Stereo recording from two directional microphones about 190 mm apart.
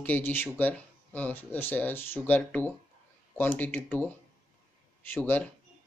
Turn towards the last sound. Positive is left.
turn(degrees=10)  # may be behind; listen again after turning